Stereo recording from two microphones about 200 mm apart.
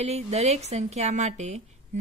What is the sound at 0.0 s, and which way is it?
Speech, 35° right (ahead or behind).